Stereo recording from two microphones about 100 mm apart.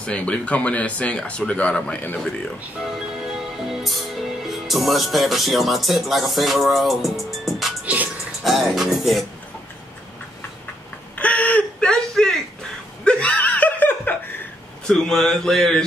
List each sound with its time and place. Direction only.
0.0 s speech: 10° left (ahead or behind)
2.8 s music: 5° right (ahead or behind)
7.8 s music: 15° right (ahead or behind)
8.5 s music: centre (ahead or behind)
11.1 s whimper: 15° left (ahead or behind)
13.0 s laughter: 10° left (ahead or behind)
14.9 s music: 5° left (ahead or behind)